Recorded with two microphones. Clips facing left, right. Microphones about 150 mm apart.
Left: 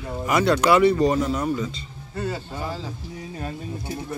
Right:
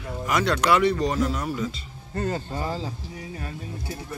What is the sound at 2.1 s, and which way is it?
Speech, 40° right (ahead or behind).